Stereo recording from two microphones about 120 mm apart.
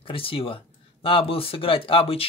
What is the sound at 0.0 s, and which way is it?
Speech, 50° left (ahead or behind).